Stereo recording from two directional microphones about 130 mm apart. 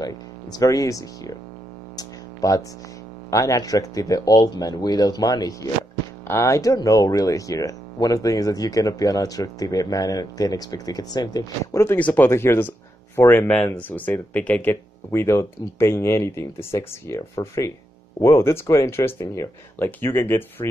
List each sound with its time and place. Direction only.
0.0 s speech: 30° left (ahead or behind)
2.0 s a sound: 25° left (ahead or behind)
3.3 s speech: 25° left (ahead or behind)